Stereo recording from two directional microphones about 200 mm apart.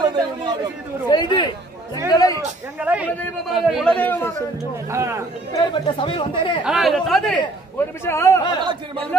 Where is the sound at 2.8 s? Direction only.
5° right (ahead or behind).